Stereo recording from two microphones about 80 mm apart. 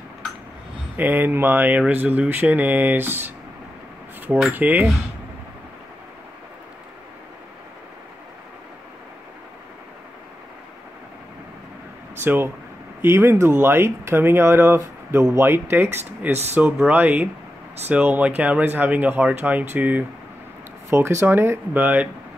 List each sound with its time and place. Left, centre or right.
0.9 s speech: right
4.5 s speech: right
12.2 s speech: right
20.9 s speech: right